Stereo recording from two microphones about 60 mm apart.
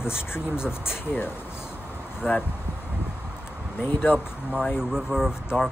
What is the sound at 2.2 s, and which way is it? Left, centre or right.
Speech, left.